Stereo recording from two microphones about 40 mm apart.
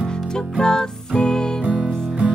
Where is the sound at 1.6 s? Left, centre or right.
Right.